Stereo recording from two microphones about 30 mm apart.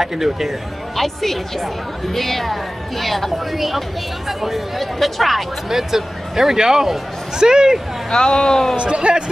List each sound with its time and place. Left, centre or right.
0.0 s speech: centre
0.9 s a woman's voice: centre
4.9 s a woman's voice: centre
5.7 s speech: centre
8.1 s speech: left
8.7 s a man's voice: right